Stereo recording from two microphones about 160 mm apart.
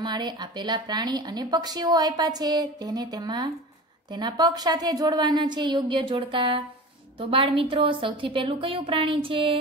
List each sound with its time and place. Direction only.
0.0 s speech: 25° right (ahead or behind)